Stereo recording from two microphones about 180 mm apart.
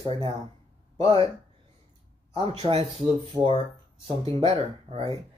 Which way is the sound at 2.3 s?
30° right (ahead or behind).